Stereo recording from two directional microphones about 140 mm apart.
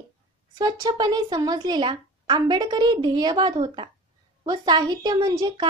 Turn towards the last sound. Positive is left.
turn(degrees=-30)  # may be behind; listen again after turning